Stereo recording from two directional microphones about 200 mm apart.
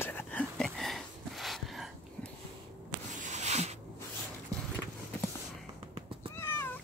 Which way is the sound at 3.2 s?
35° right (ahead or behind).